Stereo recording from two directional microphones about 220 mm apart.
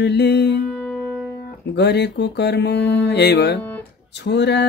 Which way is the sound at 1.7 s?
50° left (ahead or behind).